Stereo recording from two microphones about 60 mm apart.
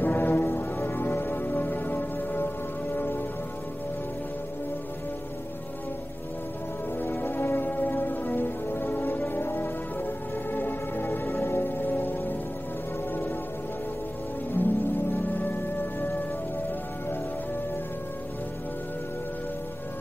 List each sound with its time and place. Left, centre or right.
0.0 s music: left
7.0 s music: left
14.5 s music: left